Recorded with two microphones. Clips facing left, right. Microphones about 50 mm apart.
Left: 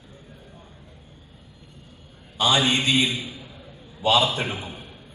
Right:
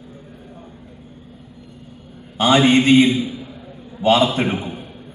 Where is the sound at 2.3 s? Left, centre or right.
Right.